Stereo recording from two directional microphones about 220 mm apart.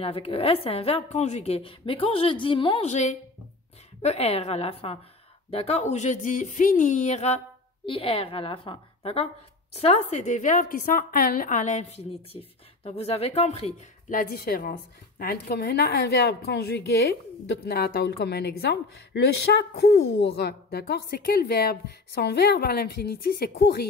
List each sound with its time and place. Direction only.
0.0 s a woman's voice: 25° left (ahead or behind); by 23.9 s 45° left (ahead or behind)